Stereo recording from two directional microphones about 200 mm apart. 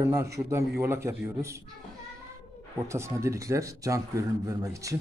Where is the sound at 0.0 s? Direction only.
15° right (ahead or behind).